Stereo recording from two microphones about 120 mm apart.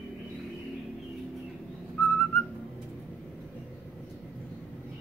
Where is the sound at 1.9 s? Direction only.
15° left (ahead or behind).